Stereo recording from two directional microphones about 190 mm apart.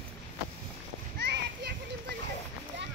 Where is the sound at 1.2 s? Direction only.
60° right (ahead or behind).